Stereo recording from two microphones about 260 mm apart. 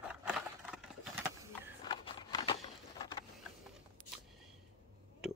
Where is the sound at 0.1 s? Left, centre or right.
Centre.